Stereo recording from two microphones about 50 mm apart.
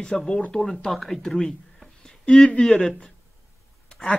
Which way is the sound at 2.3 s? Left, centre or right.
Left.